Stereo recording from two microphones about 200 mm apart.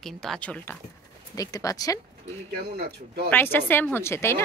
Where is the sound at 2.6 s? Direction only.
50° right (ahead or behind).